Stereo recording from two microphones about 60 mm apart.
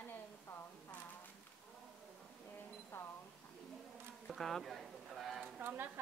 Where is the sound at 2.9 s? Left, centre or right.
Left.